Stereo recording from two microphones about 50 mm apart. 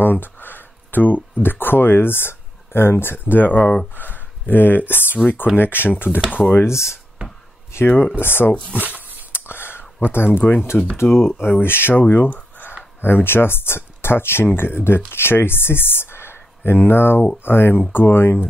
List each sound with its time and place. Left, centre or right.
0.0 s speech: left
6.6 s speech: left
8.2 s speech: left
8.8 s a sound: right
9.3 s whispering: left
10.4 s speech: left
11.0 s speech: left
12.0 s speech: left
13.0 s speech: left